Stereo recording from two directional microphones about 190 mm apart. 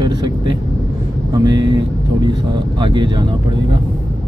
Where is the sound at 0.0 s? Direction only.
20° right (ahead or behind).